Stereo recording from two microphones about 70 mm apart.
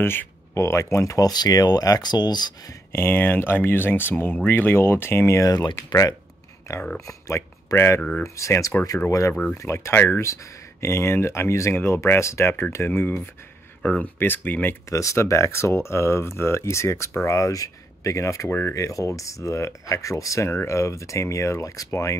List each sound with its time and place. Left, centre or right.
0.0 s speech: left
2.9 s speech: left
5.4 s speech: left
6.7 s speech: left
9.3 s speech: centre
9.6 s speech: left
13.8 s speech: centre
14.1 s speech: left
14.9 s speech: left